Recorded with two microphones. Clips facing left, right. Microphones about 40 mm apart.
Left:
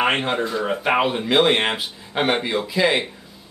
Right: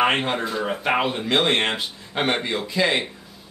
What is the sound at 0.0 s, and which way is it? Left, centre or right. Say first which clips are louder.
A man's voice: left 1 dB; centre.